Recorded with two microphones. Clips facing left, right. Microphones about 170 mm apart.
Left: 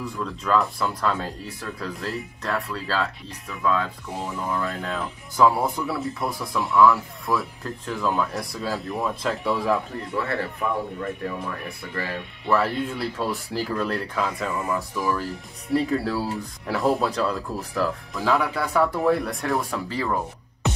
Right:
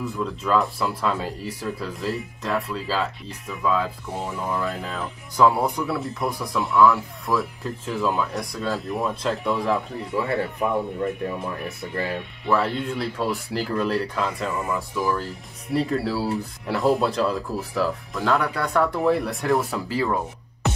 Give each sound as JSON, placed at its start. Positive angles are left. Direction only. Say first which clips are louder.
{"t": 0.0, "sound": "speech", "louder": "right 3 dB", "side_deg": -5}
{"t": 10.1, "sound": "speech", "louder": "right 3 dB", "side_deg": -15}
{"t": 12.4, "sound": "speech", "louder": "even", "side_deg": 0}